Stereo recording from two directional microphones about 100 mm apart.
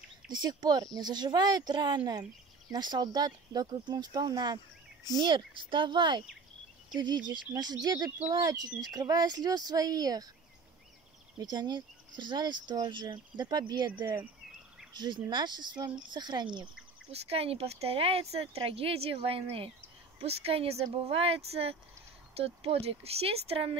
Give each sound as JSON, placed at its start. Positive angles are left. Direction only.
{"t": 0.3, "sound": "speech", "side_deg": -45}
{"t": 5.2, "sound": "speech", "side_deg": -55}
{"t": 11.3, "sound": "speech", "side_deg": -45}
{"t": 17.1, "sound": "speech", "side_deg": -80}
{"t": 20.2, "sound": "speech", "side_deg": -85}